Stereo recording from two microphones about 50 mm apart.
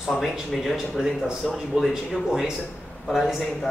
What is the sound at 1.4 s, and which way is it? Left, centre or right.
Speech, centre.